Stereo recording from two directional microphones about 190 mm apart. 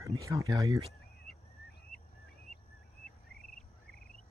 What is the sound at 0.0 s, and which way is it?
Speech, 15° right (ahead or behind).